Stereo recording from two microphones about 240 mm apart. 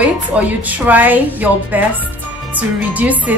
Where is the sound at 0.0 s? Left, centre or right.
Centre.